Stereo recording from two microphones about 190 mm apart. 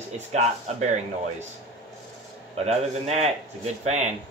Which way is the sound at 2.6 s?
35° right (ahead or behind).